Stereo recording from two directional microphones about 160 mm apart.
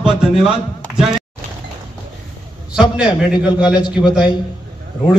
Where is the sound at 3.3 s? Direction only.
25° left (ahead or behind).